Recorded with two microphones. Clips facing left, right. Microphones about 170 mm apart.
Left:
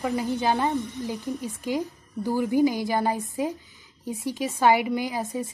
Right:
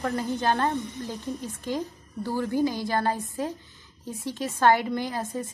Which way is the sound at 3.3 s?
15° left (ahead or behind).